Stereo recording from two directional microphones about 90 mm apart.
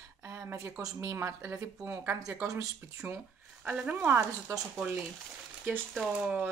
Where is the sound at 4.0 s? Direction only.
25° right (ahead or behind).